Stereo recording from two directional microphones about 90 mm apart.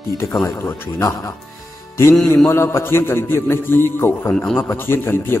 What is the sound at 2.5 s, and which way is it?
A man's voice, 30° left (ahead or behind).